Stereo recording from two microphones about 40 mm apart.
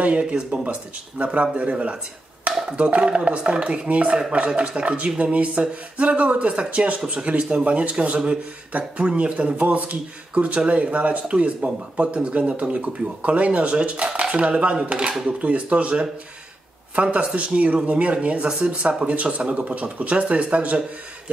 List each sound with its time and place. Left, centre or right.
0.0 s speech: right